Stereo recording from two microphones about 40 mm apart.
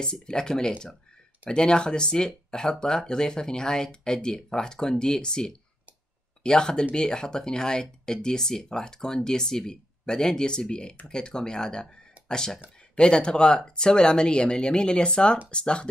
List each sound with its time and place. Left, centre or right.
0.0 s speech: centre